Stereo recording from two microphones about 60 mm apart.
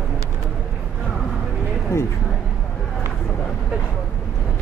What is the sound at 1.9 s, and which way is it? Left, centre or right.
Speech, left.